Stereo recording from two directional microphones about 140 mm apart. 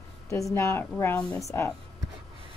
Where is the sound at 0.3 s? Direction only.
20° left (ahead or behind).